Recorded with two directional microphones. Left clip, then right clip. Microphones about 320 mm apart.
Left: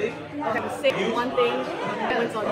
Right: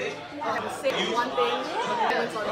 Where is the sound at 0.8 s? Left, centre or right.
Centre.